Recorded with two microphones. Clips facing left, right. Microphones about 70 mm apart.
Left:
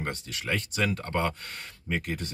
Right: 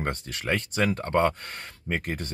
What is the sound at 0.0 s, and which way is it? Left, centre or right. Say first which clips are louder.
Speech: right 3 dB; right.